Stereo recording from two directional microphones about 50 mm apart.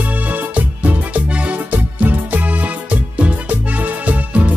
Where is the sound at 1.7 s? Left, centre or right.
Right.